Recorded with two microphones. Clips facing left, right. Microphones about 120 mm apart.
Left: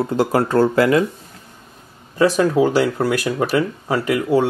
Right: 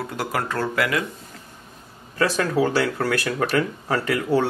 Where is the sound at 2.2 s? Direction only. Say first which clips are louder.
Left 6 dB; 15° left (ahead or behind).